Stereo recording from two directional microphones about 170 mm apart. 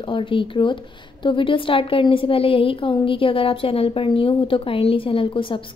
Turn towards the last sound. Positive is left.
turn(degrees=30)  # may be behind; listen again after turning